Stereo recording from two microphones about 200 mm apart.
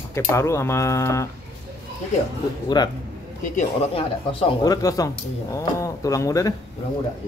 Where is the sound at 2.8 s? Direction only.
20° left (ahead or behind).